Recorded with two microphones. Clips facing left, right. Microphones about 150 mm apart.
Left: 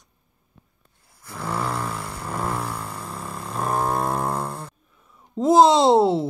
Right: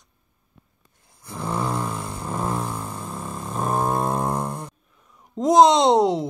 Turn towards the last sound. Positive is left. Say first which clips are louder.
# left 1 dB
turn(degrees=5)  # may be behind; listen again after turning